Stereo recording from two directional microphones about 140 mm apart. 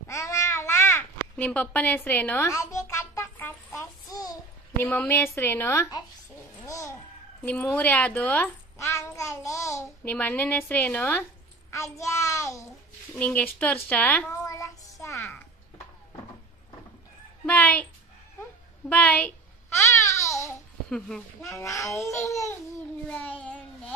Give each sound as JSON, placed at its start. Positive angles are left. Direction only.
{"t": 0.1, "sound": "babbling", "side_deg": 20}
{"t": 4.8, "sound": "a woman's voice", "side_deg": 15}
{"t": 6.7, "sound": "music", "side_deg": 20}
{"t": 7.4, "sound": "a sound", "side_deg": 10}
{"t": 10.0, "sound": "a woman's voice", "side_deg": 10}
{"t": 11.7, "sound": "child singing", "side_deg": 20}
{"t": 13.1, "sound": "a woman's voice", "side_deg": 10}
{"t": 14.4, "sound": "child singing", "side_deg": 25}
{"t": 17.5, "sound": "speech", "side_deg": 10}
{"t": 18.9, "sound": "a woman's voice", "side_deg": 10}
{"t": 19.7, "sound": "babbling", "side_deg": 20}
{"t": 21.4, "sound": "speech", "side_deg": 20}
{"t": 23.0, "sound": "child singing", "side_deg": 10}